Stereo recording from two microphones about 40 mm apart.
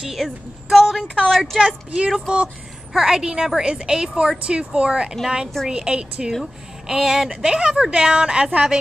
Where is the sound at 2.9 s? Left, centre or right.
Centre.